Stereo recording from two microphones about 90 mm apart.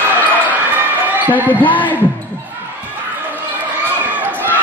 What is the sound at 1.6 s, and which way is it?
Speech, 20° left (ahead or behind).